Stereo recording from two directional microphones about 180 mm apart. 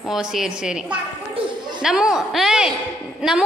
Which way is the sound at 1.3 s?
25° right (ahead or behind).